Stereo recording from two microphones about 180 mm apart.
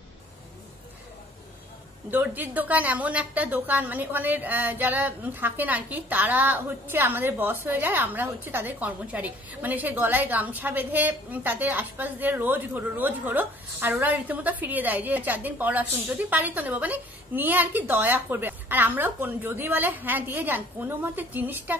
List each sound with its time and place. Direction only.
2.0 s a woman's voice: 10° right (ahead or behind)